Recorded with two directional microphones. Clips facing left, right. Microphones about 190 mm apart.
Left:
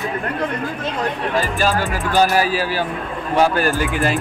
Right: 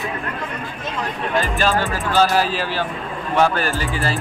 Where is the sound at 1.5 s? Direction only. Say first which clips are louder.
Even; 10° left (ahead or behind).